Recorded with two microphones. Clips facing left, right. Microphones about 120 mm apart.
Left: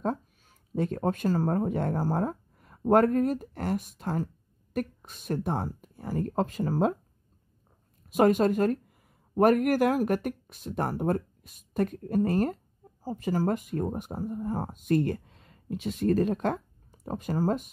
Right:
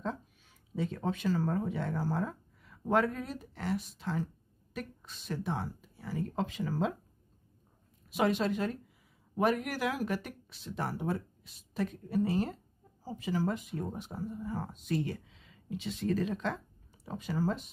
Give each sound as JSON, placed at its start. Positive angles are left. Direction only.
{"t": 0.7, "sound": "speech", "side_deg": 50}
{"t": 8.1, "sound": "speech", "side_deg": 45}